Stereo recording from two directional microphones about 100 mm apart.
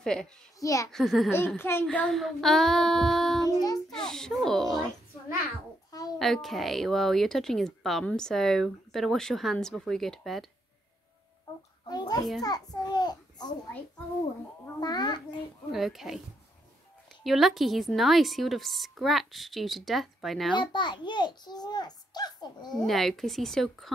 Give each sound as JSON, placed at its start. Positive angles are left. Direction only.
{"t": 0.0, "sound": "a child's voice", "side_deg": 5}
{"t": 0.6, "sound": "a child's voice", "side_deg": 35}
{"t": 0.9, "sound": "a woman's voice", "side_deg": 0}
{"t": 1.6, "sound": "a child's voice", "side_deg": 25}
{"t": 1.9, "sound": "a woman's voice", "side_deg": 5}
{"t": 3.4, "sound": "child singing", "side_deg": 40}
{"t": 3.9, "sound": "a woman's voice", "side_deg": 5}
{"t": 6.1, "sound": "a woman's voice", "side_deg": 0}
{"t": 11.9, "sound": "a child's voice", "side_deg": 45}
{"t": 14.8, "sound": "a child's voice", "side_deg": 45}
{"t": 15.7, "sound": "a woman's voice", "side_deg": 0}
{"t": 17.2, "sound": "a woman's voice", "side_deg": 0}
{"t": 20.5, "sound": "a child's voice", "side_deg": 50}
{"t": 22.8, "sound": "a woman's voice", "side_deg": 0}